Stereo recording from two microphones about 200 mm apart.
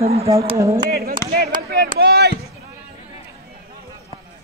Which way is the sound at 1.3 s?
50° right (ahead or behind).